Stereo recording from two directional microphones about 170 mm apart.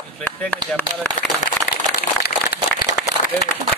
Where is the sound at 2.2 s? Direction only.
65° left (ahead or behind).